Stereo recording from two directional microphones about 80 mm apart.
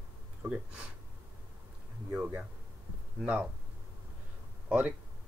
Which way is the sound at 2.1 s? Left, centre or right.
Centre.